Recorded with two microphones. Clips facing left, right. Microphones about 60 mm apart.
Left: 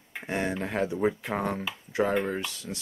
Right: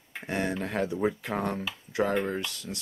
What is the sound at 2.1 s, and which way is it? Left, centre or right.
Speech, centre.